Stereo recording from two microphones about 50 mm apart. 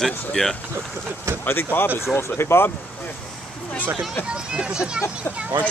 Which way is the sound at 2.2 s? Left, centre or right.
Left.